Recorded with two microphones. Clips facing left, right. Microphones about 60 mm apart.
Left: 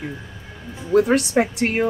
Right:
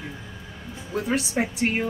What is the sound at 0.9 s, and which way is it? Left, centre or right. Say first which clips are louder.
Speech: left 9 dB; left.